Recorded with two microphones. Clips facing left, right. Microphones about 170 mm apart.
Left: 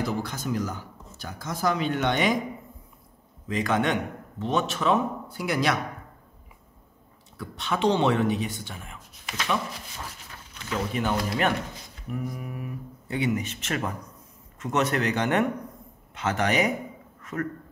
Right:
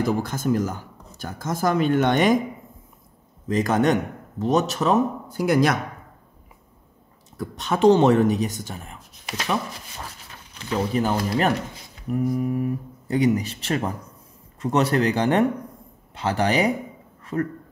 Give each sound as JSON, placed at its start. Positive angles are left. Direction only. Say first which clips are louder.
{"t": 0.0, "sound": "speech", "louder": "right 6 dB", "side_deg": -50}
{"t": 3.4, "sound": "a man's voice", "louder": "right 5 dB", "side_deg": -40}
{"t": 7.3, "sound": "speech", "louder": "right 4 dB", "side_deg": -45}
{"t": 10.7, "sound": "a man's voice", "louder": "right 4 dB", "side_deg": -35}
{"t": 17.2, "sound": "a sound", "louder": "right 5 dB", "side_deg": -30}